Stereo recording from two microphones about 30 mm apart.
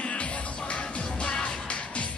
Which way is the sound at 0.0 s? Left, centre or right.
Left.